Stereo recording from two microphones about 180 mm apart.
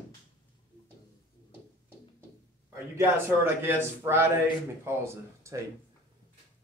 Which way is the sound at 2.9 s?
15° right (ahead or behind).